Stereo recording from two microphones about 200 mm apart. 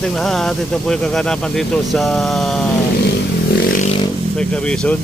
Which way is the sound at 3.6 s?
45° left (ahead or behind).